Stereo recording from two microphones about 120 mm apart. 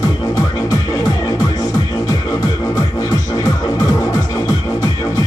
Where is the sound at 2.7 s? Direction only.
30° left (ahead or behind).